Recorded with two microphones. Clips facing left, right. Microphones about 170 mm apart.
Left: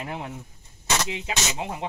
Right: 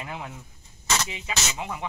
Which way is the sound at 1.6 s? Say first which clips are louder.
Left 2 dB; 35° left (ahead or behind).